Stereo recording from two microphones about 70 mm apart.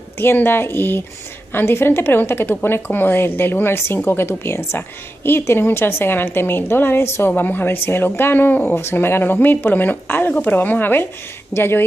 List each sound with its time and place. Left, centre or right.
0.2 s a woman's voice: left